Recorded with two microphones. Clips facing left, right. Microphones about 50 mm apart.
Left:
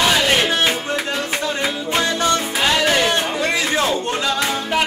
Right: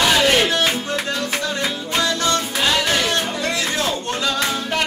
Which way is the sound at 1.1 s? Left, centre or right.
Left.